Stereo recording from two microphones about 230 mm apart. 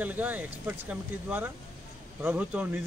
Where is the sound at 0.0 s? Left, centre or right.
Centre.